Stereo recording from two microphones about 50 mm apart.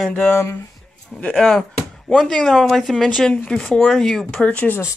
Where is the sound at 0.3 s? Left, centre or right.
Left.